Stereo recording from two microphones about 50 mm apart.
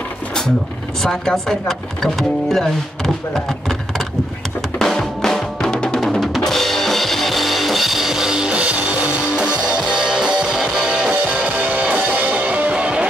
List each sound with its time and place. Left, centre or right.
1.0 s speech: centre
4.7 s drum: centre
5.9 s drum kit: centre
9.4 s music: centre
11.1 s music: right